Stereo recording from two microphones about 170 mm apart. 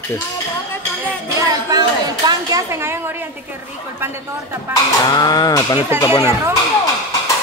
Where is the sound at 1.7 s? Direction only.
20° right (ahead or behind).